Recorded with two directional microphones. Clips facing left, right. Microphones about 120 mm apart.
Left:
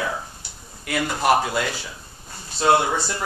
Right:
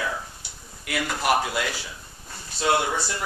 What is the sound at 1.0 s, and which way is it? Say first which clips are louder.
Speech: left 3 dB; 25° left (ahead or behind).